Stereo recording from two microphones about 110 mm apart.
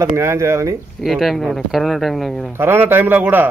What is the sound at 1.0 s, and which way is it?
Speech, centre (ahead or behind).